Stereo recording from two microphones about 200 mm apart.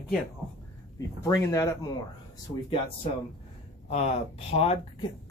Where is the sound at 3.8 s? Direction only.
30° left (ahead or behind).